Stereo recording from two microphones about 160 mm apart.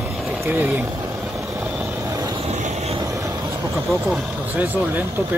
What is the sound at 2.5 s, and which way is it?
Vehicle, 45° right (ahead or behind).